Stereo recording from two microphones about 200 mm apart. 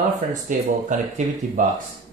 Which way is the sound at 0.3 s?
40° right (ahead or behind).